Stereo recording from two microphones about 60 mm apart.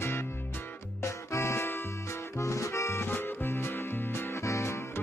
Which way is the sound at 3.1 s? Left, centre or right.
Left.